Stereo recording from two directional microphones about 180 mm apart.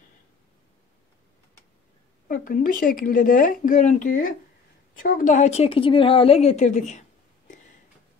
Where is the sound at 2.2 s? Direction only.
50° left (ahead or behind).